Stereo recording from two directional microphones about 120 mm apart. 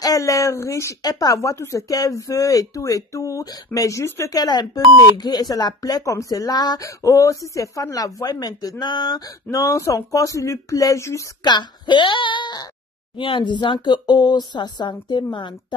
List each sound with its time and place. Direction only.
0.0 s speech: 30° left (ahead or behind)
11.4 s speech: 40° left (ahead or behind)